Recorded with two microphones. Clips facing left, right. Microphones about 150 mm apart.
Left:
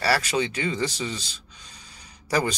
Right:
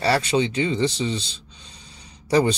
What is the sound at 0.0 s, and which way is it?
Speech, 25° right (ahead or behind).